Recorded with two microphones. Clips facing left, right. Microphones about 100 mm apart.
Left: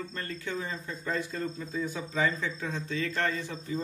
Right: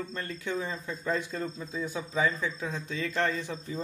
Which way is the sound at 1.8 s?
10° right (ahead or behind).